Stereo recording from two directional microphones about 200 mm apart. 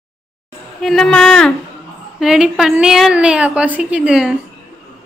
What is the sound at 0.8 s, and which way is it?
A woman's voice, centre (ahead or behind).